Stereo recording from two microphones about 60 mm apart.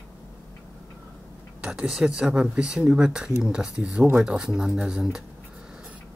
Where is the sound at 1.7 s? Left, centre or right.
Centre.